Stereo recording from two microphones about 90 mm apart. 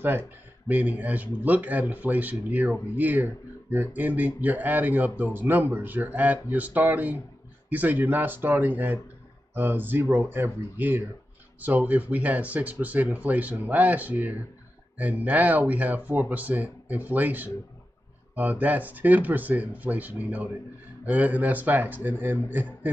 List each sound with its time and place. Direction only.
0.7 s speech: 20° right (ahead or behind)